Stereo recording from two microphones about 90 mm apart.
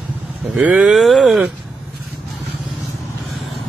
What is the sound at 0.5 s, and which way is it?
Speech, 5° right (ahead or behind).